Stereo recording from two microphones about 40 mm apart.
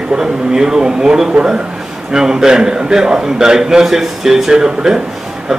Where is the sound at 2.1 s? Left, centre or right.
Centre.